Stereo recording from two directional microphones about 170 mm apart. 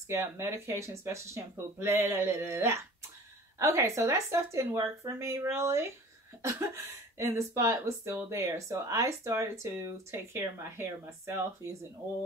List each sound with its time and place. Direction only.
0.1 s speech: 15° right (ahead or behind)